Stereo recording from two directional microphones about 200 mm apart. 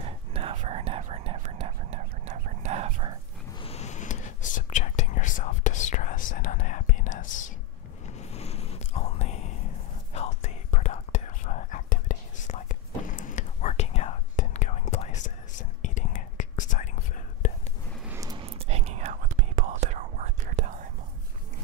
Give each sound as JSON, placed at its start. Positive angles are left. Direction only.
{"t": 0.0, "sound": "whispering", "side_deg": -30}
{"t": 3.5, "sound": "whispering", "side_deg": 30}
{"t": 18.0, "sound": "a sound", "side_deg": -15}
{"t": 18.4, "sound": "whispering", "side_deg": -30}